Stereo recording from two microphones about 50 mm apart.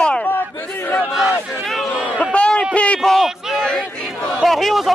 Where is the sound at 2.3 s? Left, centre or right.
Left.